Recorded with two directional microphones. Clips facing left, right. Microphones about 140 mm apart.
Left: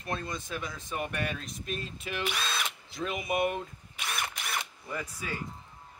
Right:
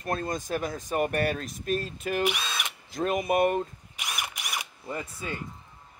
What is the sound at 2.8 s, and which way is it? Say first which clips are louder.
Speech: right 9 dB; 45° right (ahead or behind).